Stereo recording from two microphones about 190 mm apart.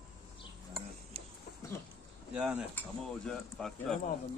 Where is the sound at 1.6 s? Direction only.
15° left (ahead or behind).